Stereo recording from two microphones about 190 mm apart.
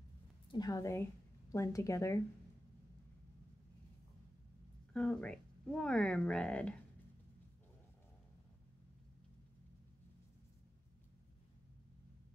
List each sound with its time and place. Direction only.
0.5 s a woman's voice: 20° left (ahead or behind)
4.9 s speech: 5° left (ahead or behind)